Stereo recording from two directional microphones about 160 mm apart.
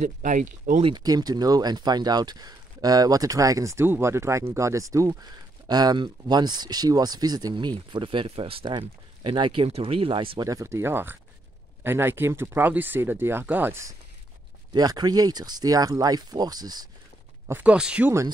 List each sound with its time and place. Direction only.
0.0 s speech: 55° right (ahead or behind)
0.8 s speech: 25° right (ahead or behind)
10.5 s speech: 15° right (ahead or behind)
17.5 s speech: 10° right (ahead or behind)